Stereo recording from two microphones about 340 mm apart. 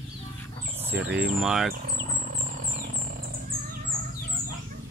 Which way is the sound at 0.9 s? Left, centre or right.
Right.